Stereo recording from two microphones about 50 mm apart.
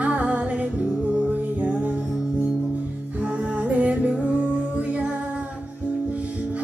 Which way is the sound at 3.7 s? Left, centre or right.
Right.